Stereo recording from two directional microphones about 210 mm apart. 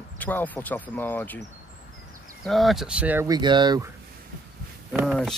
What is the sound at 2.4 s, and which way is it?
Speech, centre (ahead or behind).